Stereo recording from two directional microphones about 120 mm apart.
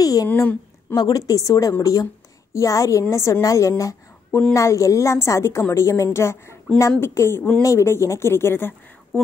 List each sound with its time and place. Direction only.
0.0 s a sound: 30° left (ahead or behind)
0.3 s speech: 15° left (ahead or behind)
0.9 s a woman's voice: 35° left (ahead or behind)